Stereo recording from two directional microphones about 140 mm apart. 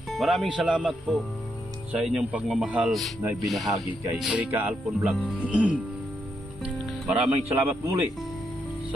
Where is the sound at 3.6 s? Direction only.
25° right (ahead or behind).